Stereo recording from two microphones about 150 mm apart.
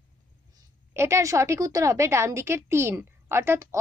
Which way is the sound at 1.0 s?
20° right (ahead or behind).